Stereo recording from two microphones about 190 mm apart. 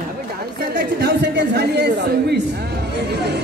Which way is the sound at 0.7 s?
65° right (ahead or behind).